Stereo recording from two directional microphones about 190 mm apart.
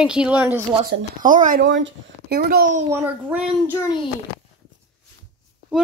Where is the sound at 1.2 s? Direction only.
45° right (ahead or behind).